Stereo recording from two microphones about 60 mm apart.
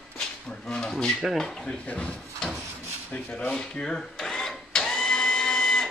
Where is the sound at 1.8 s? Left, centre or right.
Left.